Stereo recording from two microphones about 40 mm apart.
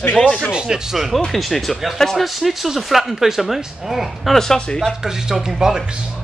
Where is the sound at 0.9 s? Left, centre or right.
Centre.